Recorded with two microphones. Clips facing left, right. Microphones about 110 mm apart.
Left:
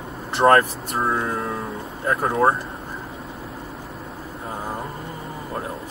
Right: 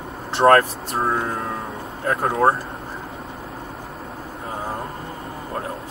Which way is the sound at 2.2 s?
5° right (ahead or behind).